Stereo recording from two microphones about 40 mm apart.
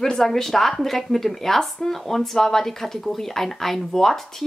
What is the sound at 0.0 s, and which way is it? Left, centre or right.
Speech, centre.